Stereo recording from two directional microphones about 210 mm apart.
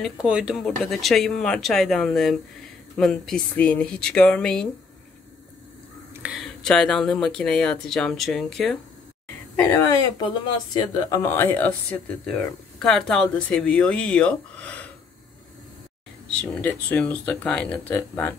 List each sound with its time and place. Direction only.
0.0 s speech: 5° right (ahead or behind)
6.2 s speech: centre (ahead or behind)
9.6 s speech: 15° left (ahead or behind)
16.3 s speech: 5° left (ahead or behind)